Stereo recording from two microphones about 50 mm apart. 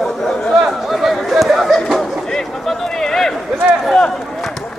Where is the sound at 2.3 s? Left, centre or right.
Centre.